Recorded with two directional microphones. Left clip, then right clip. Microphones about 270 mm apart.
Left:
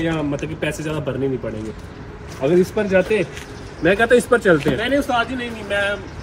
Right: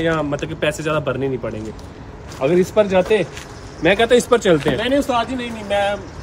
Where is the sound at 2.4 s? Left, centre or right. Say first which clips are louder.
Right 1 dB; centre.